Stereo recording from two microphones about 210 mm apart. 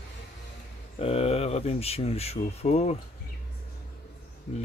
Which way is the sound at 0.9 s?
30° left (ahead or behind).